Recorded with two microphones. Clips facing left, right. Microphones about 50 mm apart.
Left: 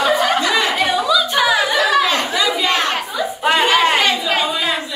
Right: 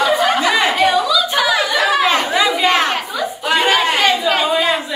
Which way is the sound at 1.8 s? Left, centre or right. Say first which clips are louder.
Right 1 dB; centre.